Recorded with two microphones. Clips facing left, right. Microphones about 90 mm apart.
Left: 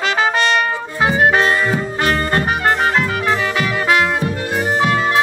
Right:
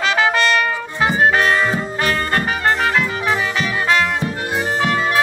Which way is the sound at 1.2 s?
30° left (ahead or behind).